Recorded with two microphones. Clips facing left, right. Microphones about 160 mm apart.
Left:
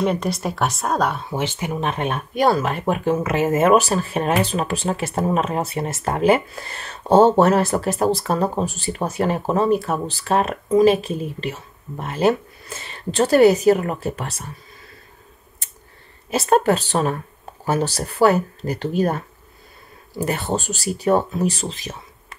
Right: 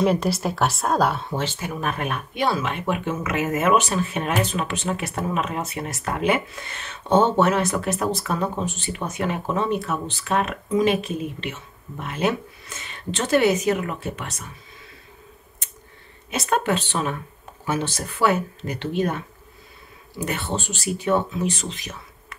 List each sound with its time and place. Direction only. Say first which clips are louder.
0.0 s a woman's voice: right 1 dB; centre (ahead or behind)
1.3 s speech: left 3 dB; 15° left (ahead or behind)
1.8 s speech: left 3 dB; 25° left (ahead or behind)
2.3 s speech: left 6 dB; 40° left (ahead or behind)
11.0 s a woman's voice: left 2 dB; centre (ahead or behind)
11.2 s speech: left 3 dB; 35° left (ahead or behind)
16.3 s speech: left 6 dB; 35° left (ahead or behind)
20.2 s speech: left 4 dB; 40° left (ahead or behind)